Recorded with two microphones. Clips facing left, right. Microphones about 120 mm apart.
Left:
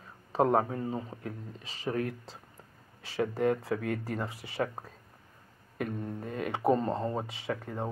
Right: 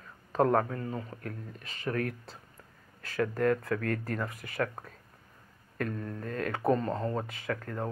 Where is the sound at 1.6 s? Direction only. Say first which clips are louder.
Right 1 dB; 90° left.